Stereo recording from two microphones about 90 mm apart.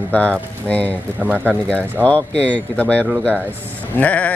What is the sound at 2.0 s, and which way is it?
Speech, 15° left (ahead or behind).